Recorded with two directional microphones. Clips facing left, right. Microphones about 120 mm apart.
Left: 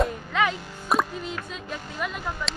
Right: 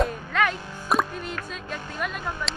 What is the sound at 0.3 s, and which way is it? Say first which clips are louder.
Music: even; 15° left (ahead or behind).